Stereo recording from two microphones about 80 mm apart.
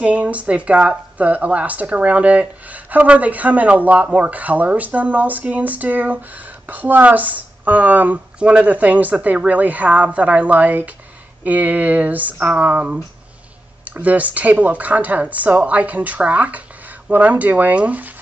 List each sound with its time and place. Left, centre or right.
0.0 s speech: centre